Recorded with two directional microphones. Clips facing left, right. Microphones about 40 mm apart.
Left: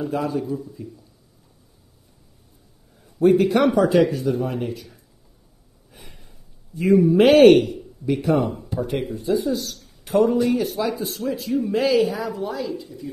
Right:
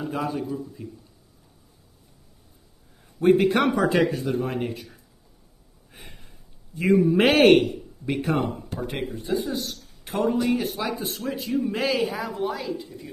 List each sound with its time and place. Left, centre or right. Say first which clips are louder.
0.1 s speech: left 4 dB; right
3.2 s speech: left 2 dB; right
5.9 s a sound: even; right
7.2 s speech: left 6 dB; right
8.7 s speech: left 8 dB; centre
9.1 s speech: left 5 dB; right
11.2 s speech: left 3 dB; centre
12.3 s speech: left 1 dB; right